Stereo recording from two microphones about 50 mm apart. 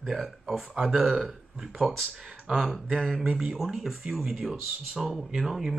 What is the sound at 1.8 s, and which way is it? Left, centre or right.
Speech, centre.